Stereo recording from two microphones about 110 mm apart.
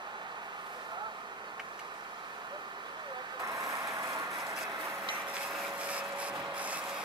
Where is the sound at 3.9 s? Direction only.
30° right (ahead or behind).